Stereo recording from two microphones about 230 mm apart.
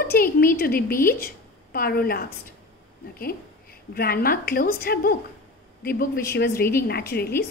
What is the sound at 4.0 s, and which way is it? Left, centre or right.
A woman's voice, left.